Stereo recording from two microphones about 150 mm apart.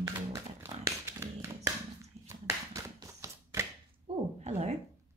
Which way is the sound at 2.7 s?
20° right (ahead or behind).